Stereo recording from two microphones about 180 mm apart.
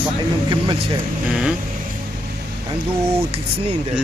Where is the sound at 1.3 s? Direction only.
5° right (ahead or behind).